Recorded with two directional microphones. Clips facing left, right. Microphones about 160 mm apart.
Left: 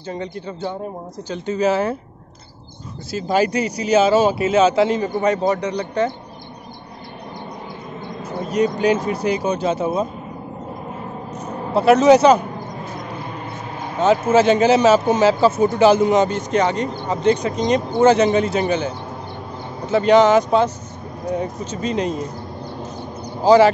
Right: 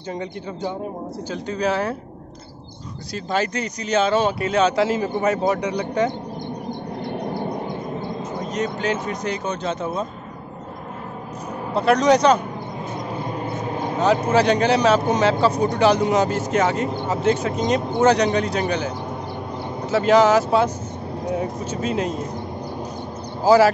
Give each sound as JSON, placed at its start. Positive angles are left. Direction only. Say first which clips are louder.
{"t": 0.1, "sound": "speech", "louder": "left 1 dB", "side_deg": -10}
{"t": 1.3, "sound": "a man's voice", "louder": "left 4 dB", "side_deg": 5}
{"t": 3.1, "sound": "a man's voice", "louder": "left 5 dB", "side_deg": 5}
{"t": 8.4, "sound": "speech", "louder": "left 8 dB", "side_deg": 10}
{"t": 11.7, "sound": "a man's voice", "louder": "left 5 dB", "side_deg": 5}
{"t": 13.9, "sound": "a man's voice", "louder": "left 3 dB", "side_deg": 0}
{"t": 23.4, "sound": "a man's voice", "louder": "left 2 dB", "side_deg": -5}